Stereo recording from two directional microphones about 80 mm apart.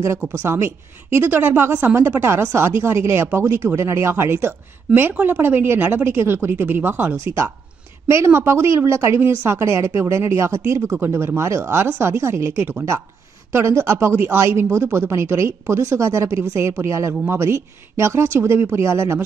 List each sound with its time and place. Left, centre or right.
0.5 s a woman's voice: right
8.3 s speech: right